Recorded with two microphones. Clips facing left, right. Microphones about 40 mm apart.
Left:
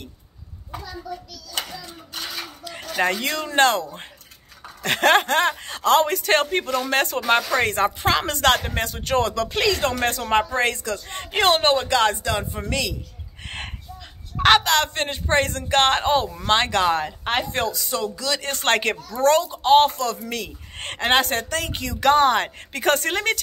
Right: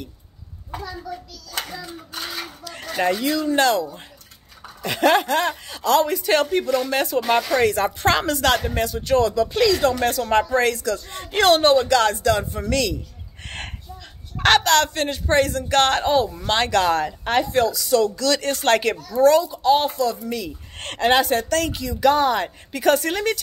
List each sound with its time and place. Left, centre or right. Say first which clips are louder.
3.1 s speech: right 4 dB; left
9.6 s speech: right 3 dB; left
10.3 s speech: right 2 dB; left
11.3 s speech: right 3 dB; left
13.4 s a sound: even; centre
15.0 s speech: right 2 dB; left
17.6 s speech: right 5 dB; left
17.9 s speech: right 9 dB; left
18.5 s speech: left 1 dB; left
20.7 s speech: even; centre
21.2 s speech: right 3 dB; left
21.5 s speech: right 5 dB; centre
21.7 s speech: left 3 dB; left